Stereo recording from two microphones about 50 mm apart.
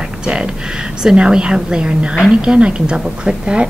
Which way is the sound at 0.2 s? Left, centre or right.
Centre.